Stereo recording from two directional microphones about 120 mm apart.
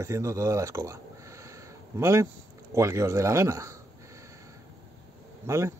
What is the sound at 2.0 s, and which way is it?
Speech, 25° right (ahead or behind).